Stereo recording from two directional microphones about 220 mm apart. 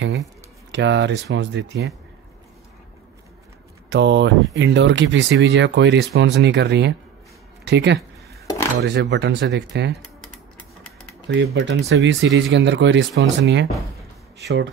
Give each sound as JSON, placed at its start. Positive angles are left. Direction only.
{"t": 0.7, "sound": "speech", "side_deg": -55}
{"t": 3.9, "sound": "speech", "side_deg": -55}
{"t": 11.2, "sound": "speech", "side_deg": -50}